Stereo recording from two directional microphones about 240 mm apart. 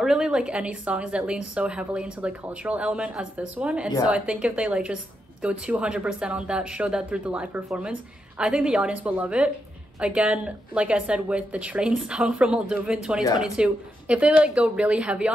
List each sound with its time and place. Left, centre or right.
0.0 s speech: centre